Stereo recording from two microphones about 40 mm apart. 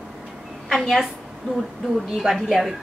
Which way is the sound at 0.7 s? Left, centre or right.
Centre.